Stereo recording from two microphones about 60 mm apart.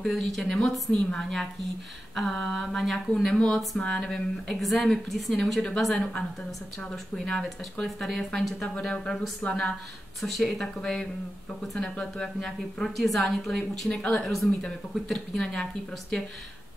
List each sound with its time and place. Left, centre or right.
0.0 s a woman's voice: centre
2.3 s mantra: centre
3.3 s a woman's voice: centre
7.2 s a woman's voice: centre
7.7 s mantra: centre
8.7 s a woman's voice: centre
9.4 s a woman's voice: left
10.2 s a woman's voice: centre
14.2 s mantra: centre
15.1 s a woman's voice: centre